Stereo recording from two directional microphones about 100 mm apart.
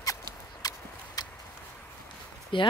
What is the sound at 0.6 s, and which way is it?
Clip-clop, 40° left (ahead or behind).